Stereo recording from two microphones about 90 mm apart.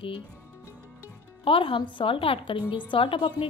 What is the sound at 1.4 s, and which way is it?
A woman's voice, 75° left (ahead or behind).